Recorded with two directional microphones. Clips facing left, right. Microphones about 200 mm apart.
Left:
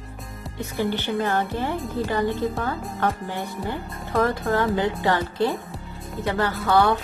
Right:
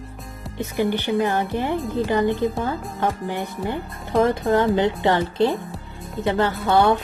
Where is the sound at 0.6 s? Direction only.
15° right (ahead or behind).